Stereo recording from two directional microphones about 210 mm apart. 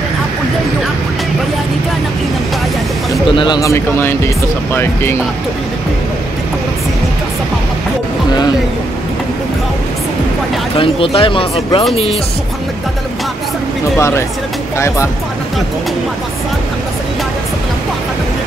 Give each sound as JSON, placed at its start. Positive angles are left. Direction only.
{"t": 3.3, "sound": "speech", "side_deg": 20}
{"t": 10.8, "sound": "speech", "side_deg": 25}
{"t": 13.9, "sound": "speech", "side_deg": 15}